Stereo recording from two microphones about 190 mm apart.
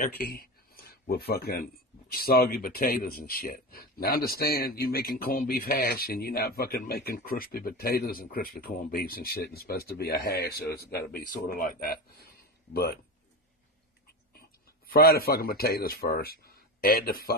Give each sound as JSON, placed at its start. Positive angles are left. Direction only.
{"t": 0.0, "sound": "speech", "side_deg": 50}
{"t": 14.9, "sound": "speech", "side_deg": 50}